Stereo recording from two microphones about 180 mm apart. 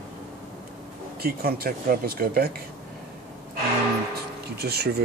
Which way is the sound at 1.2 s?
55° right (ahead or behind).